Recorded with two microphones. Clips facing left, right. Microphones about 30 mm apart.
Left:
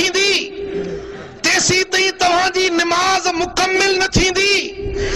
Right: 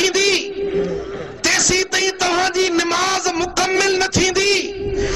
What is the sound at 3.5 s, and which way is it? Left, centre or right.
Music, centre.